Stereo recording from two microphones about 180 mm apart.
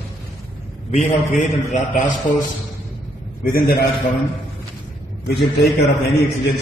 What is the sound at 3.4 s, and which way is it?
Speech, 55° left (ahead or behind).